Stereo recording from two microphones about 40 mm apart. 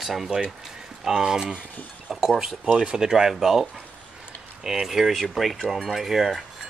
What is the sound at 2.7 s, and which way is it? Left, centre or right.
Speech, centre.